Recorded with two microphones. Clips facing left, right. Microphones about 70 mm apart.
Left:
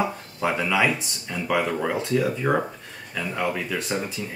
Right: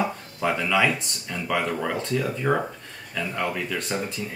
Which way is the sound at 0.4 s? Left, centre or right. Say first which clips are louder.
Even; centre.